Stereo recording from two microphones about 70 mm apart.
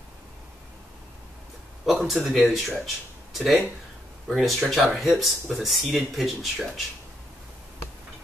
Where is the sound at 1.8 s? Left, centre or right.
Centre.